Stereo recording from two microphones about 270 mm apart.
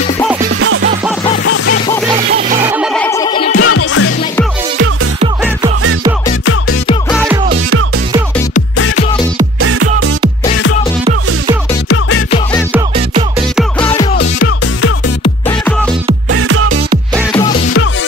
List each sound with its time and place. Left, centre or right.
0.5 s music: right
1.4 s music: left
2.6 s music: centre
3.6 s music: left
7.1 s music: centre
8.7 s music: left
9.6 s music: right
13.6 s music: centre
14.1 s music: left
16.3 s music: right